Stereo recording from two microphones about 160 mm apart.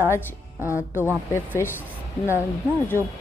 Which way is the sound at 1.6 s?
15° left (ahead or behind).